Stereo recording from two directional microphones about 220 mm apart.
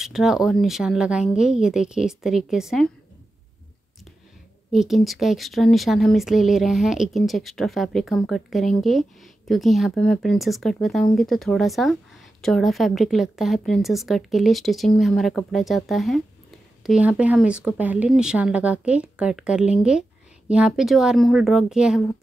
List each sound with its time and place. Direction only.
0.0 s speech: centre (ahead or behind)
4.7 s speech: centre (ahead or behind)